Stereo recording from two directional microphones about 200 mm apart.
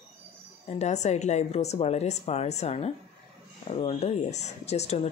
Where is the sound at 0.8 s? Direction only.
35° left (ahead or behind).